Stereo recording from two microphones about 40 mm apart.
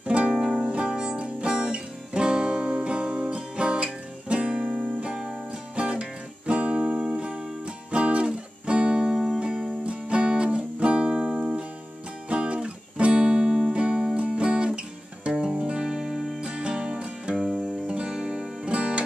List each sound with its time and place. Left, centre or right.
0.0 s music: right
0.3 s music: centre
0.7 s music: right
9.1 s music: centre
9.8 s music: right; by 16.3 s centre
16.3 s music: right
17.4 s music: centre
17.8 s music: right